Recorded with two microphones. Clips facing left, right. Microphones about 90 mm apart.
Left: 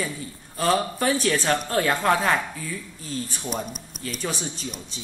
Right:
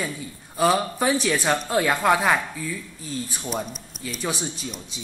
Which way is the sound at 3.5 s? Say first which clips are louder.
Right 2 dB; 10° left (ahead or behind).